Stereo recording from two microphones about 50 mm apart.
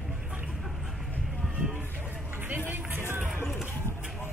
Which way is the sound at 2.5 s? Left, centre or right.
Right.